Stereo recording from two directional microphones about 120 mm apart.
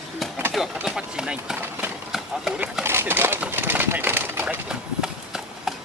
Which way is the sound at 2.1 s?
5° right (ahead or behind).